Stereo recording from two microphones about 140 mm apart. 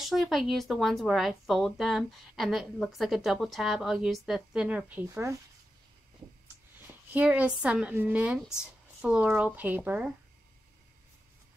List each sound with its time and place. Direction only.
0.0 s speech: centre (ahead or behind)
5.0 s speech: 20° right (ahead or behind)
7.1 s a woman's voice: 10° right (ahead or behind)